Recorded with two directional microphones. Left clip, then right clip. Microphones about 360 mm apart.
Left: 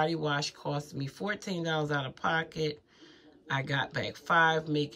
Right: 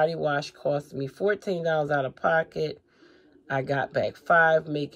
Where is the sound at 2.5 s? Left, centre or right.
Left.